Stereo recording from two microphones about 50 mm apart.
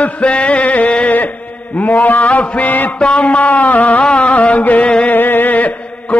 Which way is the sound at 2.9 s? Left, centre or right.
Left.